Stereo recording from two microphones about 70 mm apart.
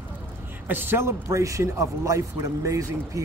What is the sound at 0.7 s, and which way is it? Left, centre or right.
Speech, right.